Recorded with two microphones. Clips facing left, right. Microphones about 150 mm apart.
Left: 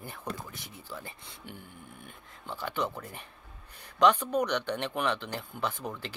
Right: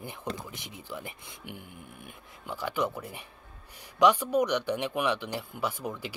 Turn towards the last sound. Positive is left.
turn(degrees=-10)  # may be behind; listen again after turning